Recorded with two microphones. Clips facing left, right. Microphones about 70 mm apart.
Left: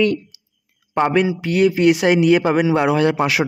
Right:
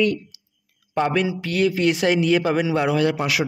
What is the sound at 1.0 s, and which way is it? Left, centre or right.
A man's voice, left.